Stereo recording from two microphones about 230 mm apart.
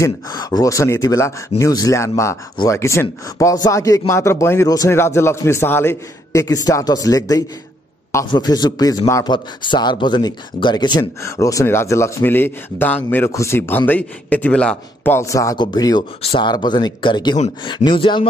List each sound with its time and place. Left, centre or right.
0.0 s a man's voice: centre